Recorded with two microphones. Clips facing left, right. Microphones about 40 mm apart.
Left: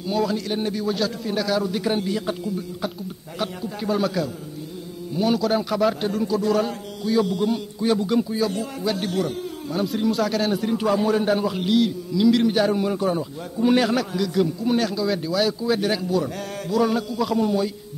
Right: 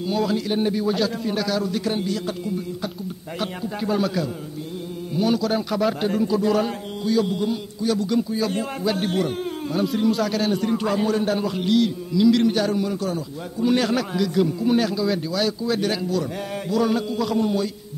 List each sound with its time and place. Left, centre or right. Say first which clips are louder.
0.0 s a man's voice: right 1 dB; centre
3.3 s a man's voice: even; centre
7.8 s a man's voice: left 1 dB; left
8.1 s speech: left 1 dB; centre
8.8 s a man's voice: right 1 dB; centre; by 13.2 s left
13.6 s a man's voice: left 1 dB; centre
16.3 s a sound: right 2 dB; centre
16.7 s a man's voice: even; centre